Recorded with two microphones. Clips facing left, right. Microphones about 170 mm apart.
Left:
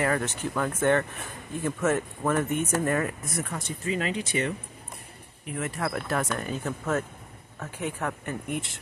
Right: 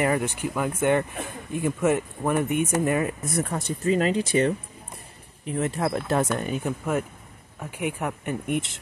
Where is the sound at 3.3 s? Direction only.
40° right (ahead or behind).